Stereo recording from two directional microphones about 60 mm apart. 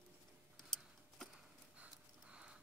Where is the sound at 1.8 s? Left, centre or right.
Centre.